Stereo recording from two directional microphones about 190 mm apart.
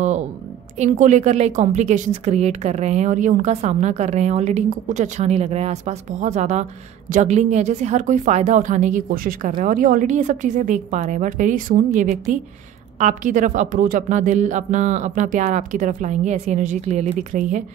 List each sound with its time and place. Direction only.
0.7 s a woman's voice: 40° right (ahead or behind)